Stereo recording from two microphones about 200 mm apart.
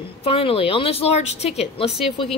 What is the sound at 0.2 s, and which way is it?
A woman's voice, 30° left (ahead or behind).